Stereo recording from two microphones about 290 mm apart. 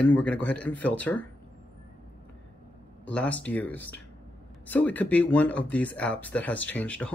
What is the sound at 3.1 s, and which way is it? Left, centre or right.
Speech, centre.